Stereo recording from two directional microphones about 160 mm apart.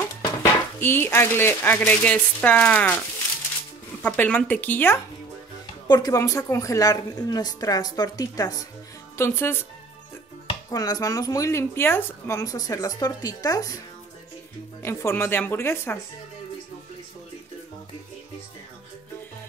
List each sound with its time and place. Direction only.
0.2 s dishes: 15° left (ahead or behind)
4.0 s a woman's voice: 10° left (ahead or behind)
5.9 s a woman's voice: 25° left (ahead or behind)
10.7 s a woman's voice: 25° left (ahead or behind)
14.8 s a woman's voice: 15° left (ahead or behind)